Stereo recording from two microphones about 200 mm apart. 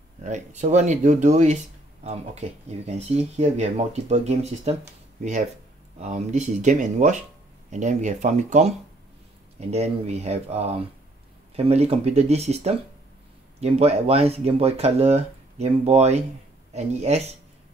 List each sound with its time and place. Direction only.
0.2 s speech: 35° right (ahead or behind)
2.9 s speech: 30° right (ahead or behind)
5.9 s speech: 35° right (ahead or behind)